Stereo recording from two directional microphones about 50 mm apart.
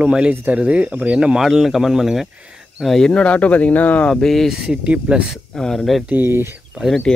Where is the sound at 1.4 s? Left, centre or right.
Centre.